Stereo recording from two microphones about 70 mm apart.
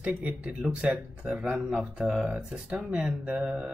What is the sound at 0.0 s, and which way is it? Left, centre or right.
Speech, centre.